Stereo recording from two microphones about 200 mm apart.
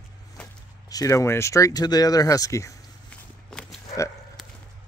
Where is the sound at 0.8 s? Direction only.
15° left (ahead or behind).